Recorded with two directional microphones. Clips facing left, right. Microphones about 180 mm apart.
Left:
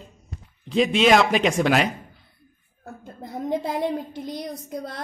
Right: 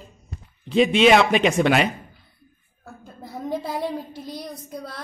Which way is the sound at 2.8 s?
20° left (ahead or behind).